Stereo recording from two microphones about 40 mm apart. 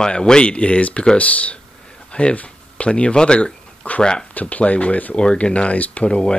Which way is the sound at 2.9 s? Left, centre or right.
Left.